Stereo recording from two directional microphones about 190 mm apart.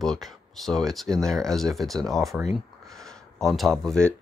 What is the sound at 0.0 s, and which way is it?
Speech, centre (ahead or behind).